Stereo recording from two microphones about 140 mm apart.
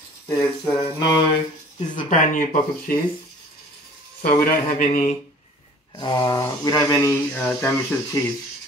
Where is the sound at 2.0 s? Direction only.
70° left (ahead or behind).